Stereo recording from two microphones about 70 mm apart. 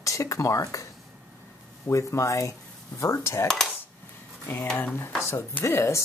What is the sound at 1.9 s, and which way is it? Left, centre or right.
Speech, left.